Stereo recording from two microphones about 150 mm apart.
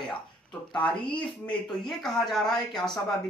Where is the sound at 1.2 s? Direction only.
5° left (ahead or behind).